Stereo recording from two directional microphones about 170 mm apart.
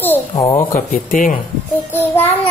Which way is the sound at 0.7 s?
50° left (ahead or behind).